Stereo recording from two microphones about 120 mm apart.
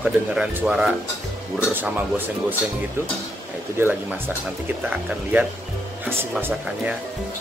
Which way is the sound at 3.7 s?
20° right (ahead or behind).